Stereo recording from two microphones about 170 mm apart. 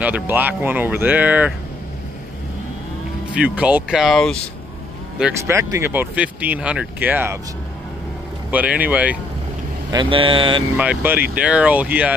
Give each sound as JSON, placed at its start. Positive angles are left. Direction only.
{"t": 0.0, "sound": "speech", "side_deg": -10}
{"t": 3.3, "sound": "speech", "side_deg": -5}
{"t": 5.4, "sound": "speech", "side_deg": -15}
{"t": 8.5, "sound": "speech", "side_deg": -10}
{"t": 9.8, "sound": "speech", "side_deg": -30}
{"t": 10.8, "sound": "speech", "side_deg": -10}